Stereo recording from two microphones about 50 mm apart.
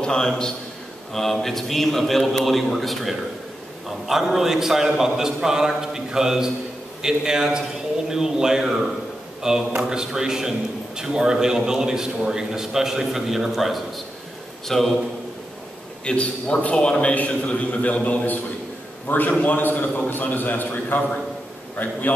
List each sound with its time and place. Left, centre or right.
0.0 s a man's voice: centre
16.0 s a man's voice: left